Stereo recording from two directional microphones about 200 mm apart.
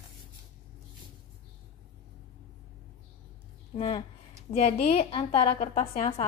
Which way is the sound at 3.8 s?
25° left (ahead or behind).